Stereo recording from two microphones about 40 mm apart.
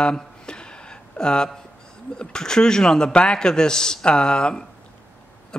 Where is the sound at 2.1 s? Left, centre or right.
Centre.